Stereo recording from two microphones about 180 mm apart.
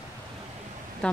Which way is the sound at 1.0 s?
5° left (ahead or behind).